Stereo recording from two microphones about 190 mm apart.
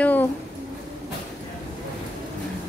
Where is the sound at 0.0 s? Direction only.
10° left (ahead or behind).